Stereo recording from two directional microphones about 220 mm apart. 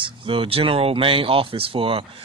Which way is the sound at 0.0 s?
25° right (ahead or behind).